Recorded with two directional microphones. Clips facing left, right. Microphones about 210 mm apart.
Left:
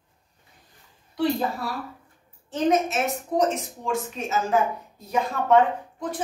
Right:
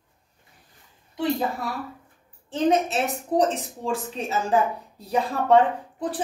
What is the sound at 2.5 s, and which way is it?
A woman's voice, 30° right (ahead or behind).